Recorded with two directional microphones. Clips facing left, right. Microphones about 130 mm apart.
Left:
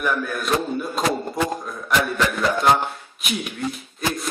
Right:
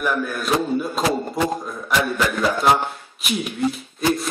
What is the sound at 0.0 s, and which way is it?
A man's voice, centre (ahead or behind).